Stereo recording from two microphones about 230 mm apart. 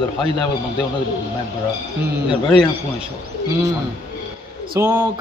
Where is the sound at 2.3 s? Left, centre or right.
Right.